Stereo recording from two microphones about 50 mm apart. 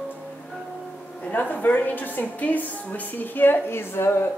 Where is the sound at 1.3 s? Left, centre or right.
Left.